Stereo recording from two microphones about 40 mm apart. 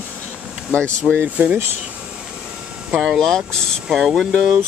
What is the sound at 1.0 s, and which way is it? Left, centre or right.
Speech, right.